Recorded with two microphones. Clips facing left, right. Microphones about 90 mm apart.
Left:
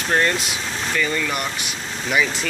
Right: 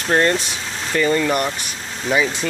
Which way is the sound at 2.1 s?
25° right (ahead or behind).